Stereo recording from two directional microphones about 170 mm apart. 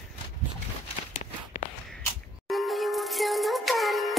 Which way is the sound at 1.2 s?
45° left (ahead or behind).